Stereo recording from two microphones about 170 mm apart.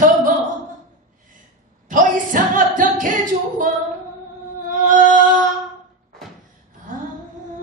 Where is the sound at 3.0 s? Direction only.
50° right (ahead or behind).